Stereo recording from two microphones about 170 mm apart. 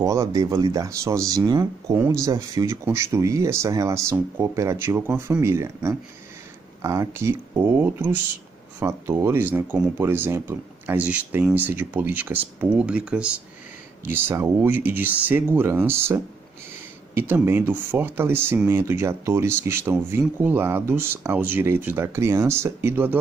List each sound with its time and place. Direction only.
0.0 s speech: 20° right (ahead or behind)